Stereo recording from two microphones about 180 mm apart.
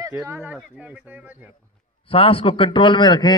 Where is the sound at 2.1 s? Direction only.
30° left (ahead or behind).